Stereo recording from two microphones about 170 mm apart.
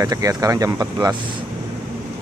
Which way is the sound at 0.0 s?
20° right (ahead or behind).